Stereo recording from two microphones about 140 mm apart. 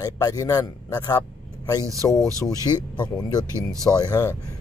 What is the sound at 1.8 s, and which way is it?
Speech, 25° right (ahead or behind).